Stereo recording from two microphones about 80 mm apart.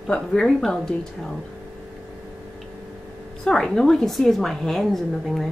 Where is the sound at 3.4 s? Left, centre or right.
Centre.